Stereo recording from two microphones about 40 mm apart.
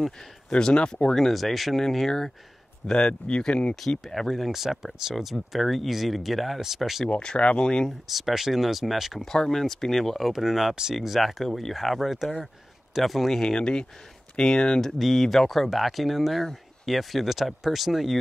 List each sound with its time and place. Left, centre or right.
0.5 s speech: left
1.1 s speech: centre
3.1 s speech: left
4.1 s speech: centre
4.5 s speech: centre
7.1 s speech: left
8.1 s speech: centre
9.2 s speech: centre
13.4 s speech: centre
14.8 s speech: centre